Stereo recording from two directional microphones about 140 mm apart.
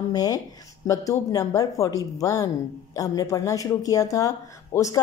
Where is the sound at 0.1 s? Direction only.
30° left (ahead or behind).